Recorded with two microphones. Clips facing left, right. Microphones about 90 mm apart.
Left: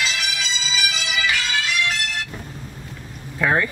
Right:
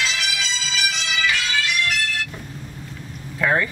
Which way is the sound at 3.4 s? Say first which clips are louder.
Even; 10° left (ahead or behind).